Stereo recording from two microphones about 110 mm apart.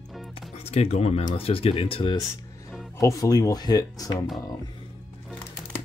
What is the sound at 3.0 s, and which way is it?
Speech, 30° left (ahead or behind).